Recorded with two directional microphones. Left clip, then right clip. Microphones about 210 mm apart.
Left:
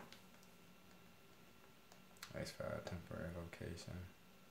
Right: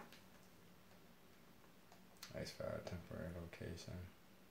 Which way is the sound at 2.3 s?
20° left (ahead or behind).